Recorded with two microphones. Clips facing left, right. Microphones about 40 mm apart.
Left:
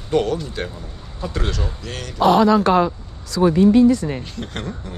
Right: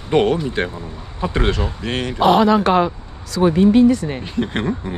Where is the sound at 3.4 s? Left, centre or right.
Right.